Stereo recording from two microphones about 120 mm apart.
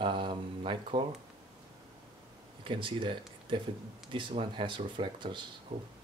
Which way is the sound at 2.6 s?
45° right (ahead or behind).